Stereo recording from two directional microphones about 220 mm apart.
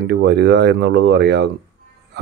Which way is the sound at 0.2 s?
50° right (ahead or behind).